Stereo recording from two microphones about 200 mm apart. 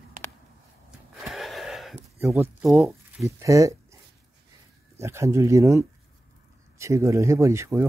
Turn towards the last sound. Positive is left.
turn(degrees=-15)  # may be behind; listen again after turning